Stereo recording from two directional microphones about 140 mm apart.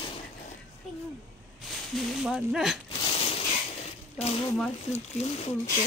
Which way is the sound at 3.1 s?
45° left (ahead or behind).